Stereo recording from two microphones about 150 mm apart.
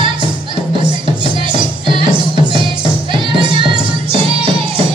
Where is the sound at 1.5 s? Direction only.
30° right (ahead or behind).